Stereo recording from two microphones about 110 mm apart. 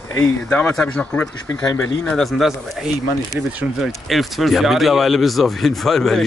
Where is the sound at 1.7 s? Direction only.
25° left (ahead or behind).